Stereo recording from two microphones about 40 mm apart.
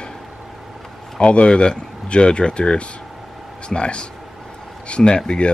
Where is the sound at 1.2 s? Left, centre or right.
Left.